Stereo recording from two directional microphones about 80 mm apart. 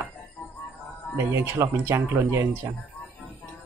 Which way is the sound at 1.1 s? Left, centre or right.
Right.